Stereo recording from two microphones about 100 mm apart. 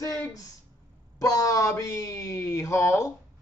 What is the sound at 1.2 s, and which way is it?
Speech, 35° left (ahead or behind).